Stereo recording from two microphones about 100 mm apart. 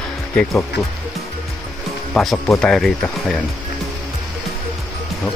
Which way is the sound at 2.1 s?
Centre (ahead or behind).